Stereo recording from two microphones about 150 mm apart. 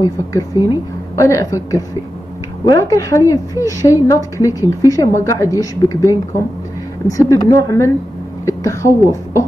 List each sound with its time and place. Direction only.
0.0 s a woman's voice: 20° left (ahead or behind)